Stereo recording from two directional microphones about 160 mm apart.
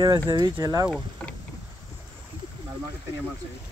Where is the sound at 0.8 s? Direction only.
5° left (ahead or behind).